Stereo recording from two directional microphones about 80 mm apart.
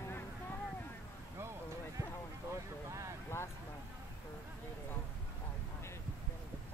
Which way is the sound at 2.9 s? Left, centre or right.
Right.